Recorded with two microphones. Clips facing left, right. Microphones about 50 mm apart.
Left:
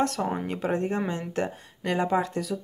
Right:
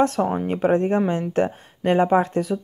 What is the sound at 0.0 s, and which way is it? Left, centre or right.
Speech, right.